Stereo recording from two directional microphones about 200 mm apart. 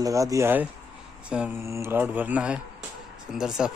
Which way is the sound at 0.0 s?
15° right (ahead or behind).